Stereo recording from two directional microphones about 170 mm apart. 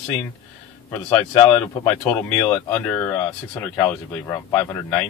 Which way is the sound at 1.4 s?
10° left (ahead or behind).